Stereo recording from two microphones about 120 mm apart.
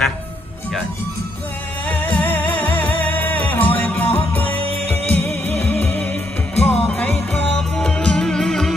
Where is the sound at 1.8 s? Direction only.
15° left (ahead or behind).